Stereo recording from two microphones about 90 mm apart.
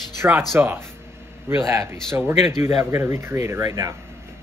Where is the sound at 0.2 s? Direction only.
20° right (ahead or behind); by 3.9 s 35° right (ahead or behind).